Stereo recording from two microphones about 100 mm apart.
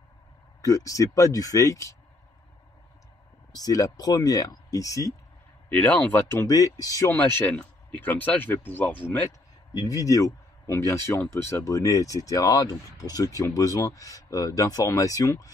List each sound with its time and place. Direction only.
0.6 s speech: 35° left (ahead or behind)
3.5 s speech: 40° left (ahead or behind)
5.7 s speech: 15° left (ahead or behind)
6.4 s speech: 35° left (ahead or behind)
7.1 s speech: 20° left (ahead or behind)
9.8 s speech: 35° left (ahead or behind)